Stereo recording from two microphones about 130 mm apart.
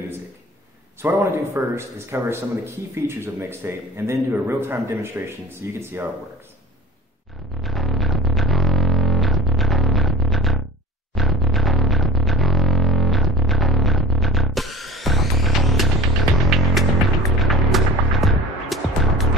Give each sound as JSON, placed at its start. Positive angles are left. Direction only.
{"t": 1.0, "sound": "a man's voice", "side_deg": -15}
{"t": 7.6, "sound": "music", "side_deg": 0}